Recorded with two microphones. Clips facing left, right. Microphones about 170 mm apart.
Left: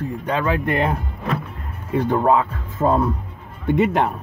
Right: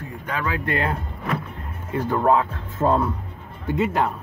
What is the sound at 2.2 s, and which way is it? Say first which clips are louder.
Speech: right 1 dB; 5° left (ahead or behind).